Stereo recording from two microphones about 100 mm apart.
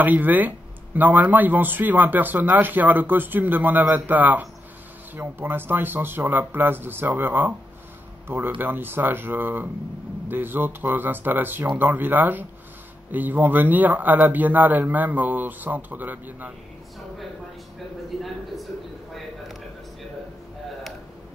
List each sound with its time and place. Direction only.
0.0 s a man's voice: 15° right (ahead or behind)
8.5 s a man's voice: 20° right (ahead or behind)